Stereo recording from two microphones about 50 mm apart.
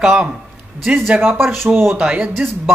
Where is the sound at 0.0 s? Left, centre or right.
Centre.